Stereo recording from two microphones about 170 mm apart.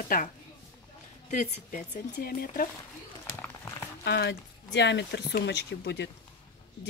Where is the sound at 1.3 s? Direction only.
45° left (ahead or behind).